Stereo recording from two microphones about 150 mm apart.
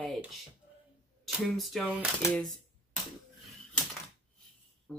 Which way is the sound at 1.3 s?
Centre (ahead or behind).